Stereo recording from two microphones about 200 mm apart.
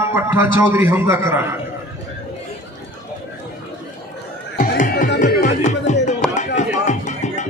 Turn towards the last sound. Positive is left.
turn(degrees=35)  # may be behind; listen again after turning